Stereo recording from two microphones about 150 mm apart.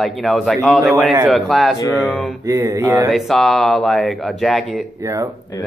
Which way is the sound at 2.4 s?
20° right (ahead or behind).